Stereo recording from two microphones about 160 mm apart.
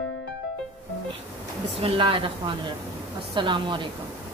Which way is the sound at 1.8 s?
35° right (ahead or behind).